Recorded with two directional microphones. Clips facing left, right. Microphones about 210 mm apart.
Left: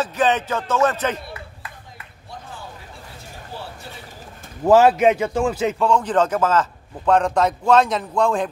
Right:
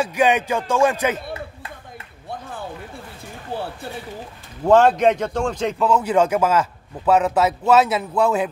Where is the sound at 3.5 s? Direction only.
60° right (ahead or behind).